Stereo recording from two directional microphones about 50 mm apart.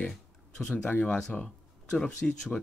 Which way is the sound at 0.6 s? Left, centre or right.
Centre.